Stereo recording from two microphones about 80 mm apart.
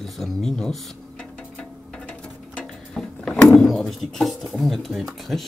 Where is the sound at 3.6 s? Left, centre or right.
Centre.